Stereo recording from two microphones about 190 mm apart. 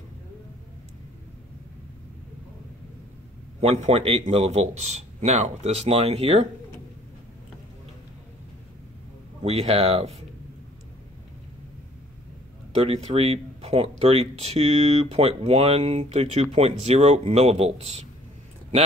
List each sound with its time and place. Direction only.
3.6 s speech: 35° right (ahead or behind)
9.4 s speech: 30° right (ahead or behind)
12.8 s speech: 30° right (ahead or behind)